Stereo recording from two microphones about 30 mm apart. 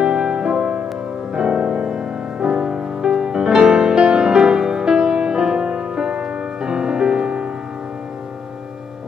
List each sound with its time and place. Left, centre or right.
0.0 s music: right
1.3 s music: right